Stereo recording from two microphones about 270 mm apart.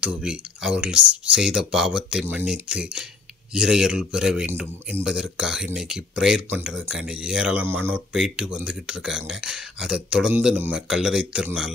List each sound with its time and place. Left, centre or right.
0.0 s speech: centre